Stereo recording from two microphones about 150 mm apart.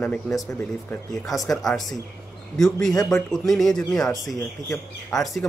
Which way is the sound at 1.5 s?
Centre (ahead or behind).